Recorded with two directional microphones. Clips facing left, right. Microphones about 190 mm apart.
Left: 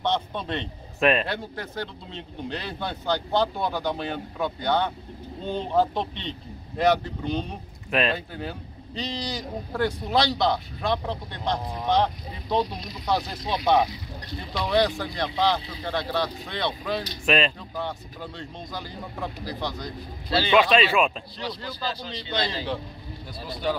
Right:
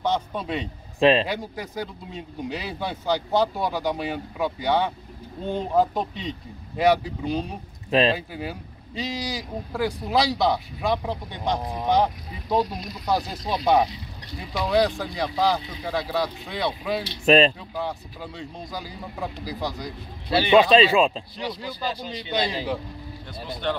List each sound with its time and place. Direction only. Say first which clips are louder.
0.0 s speech: right 1 dB; 5° right (ahead or behind)
0.9 s a man's voice: right 4 dB; 30° right (ahead or behind)
1.2 s speech: right 2 dB; 10° right (ahead or behind)
7.9 s speech: right 4 dB; 30° right (ahead or behind)
8.3 s speech: right 1 dB; 10° right (ahead or behind)
17.2 s speech: right 7 dB; 40° right (ahead or behind)
17.7 s speech: right 2 dB; 5° right (ahead or behind)
20.3 s speech: right 4 dB; 20° right (ahead or behind)
21.4 s speech: right 2 dB; 15° right (ahead or behind)
23.6 s speech: even; 5° left (ahead or behind)